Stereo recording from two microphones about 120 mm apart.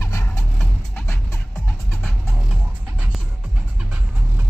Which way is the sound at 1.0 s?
20° left (ahead or behind).